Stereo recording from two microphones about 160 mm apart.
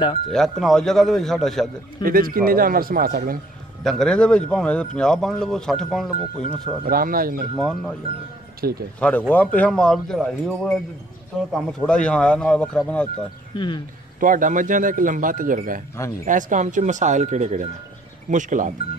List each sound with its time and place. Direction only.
0.3 s speech: centre (ahead or behind)
2.0 s speech: 65° right (ahead or behind)
3.8 s speech: centre (ahead or behind)
6.8 s speech: 65° right (ahead or behind)
7.5 s speech: 5° left (ahead or behind)
8.6 s speech: 70° right (ahead or behind)
9.3 s speech: 10° left (ahead or behind)
13.6 s speech: 30° left (ahead or behind)
14.2 s speech: 55° right (ahead or behind)